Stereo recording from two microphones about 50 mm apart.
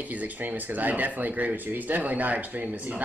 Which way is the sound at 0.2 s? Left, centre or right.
Right.